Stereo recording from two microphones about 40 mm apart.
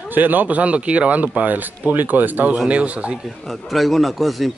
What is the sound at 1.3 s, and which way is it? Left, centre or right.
Speech, right.